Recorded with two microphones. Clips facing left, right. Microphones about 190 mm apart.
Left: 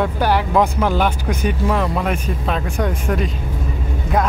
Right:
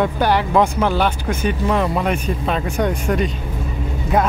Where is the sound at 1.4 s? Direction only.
Centre (ahead or behind).